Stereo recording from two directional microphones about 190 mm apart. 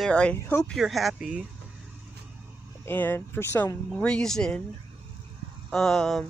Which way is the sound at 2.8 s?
10° left (ahead or behind).